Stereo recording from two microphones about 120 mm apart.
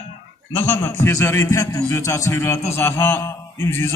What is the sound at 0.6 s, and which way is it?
A man's voice, 20° left (ahead or behind).